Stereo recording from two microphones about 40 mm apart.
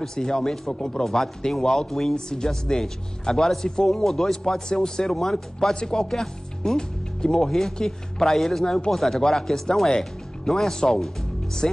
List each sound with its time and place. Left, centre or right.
0.0 s speech: centre
1.0 s speech: centre
8.9 s speech: centre